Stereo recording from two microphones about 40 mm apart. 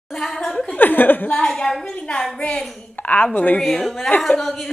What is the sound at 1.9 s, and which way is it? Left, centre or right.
Speech, left.